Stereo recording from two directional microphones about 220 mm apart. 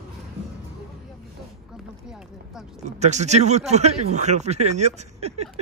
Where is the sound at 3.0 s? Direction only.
30° right (ahead or behind).